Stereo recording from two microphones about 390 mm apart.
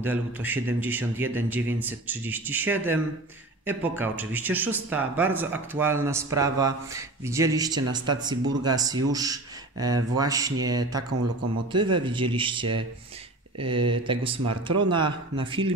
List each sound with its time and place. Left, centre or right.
0.0 s speech: centre
14.4 s speech: right
14.9 s speech: centre